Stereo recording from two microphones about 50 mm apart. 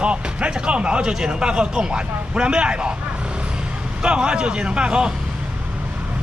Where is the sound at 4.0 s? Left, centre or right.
Centre.